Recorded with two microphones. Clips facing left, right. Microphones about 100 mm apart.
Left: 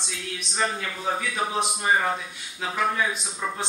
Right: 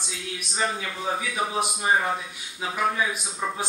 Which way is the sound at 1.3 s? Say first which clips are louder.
Even; 10° right (ahead or behind).